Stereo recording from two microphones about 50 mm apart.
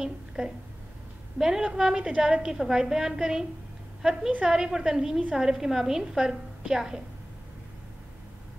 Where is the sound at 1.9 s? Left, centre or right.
Right.